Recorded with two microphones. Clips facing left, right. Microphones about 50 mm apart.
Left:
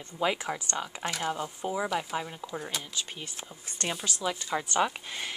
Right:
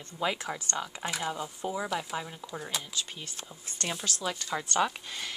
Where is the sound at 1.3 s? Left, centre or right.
Centre.